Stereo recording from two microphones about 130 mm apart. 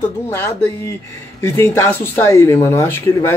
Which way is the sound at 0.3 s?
20° left (ahead or behind).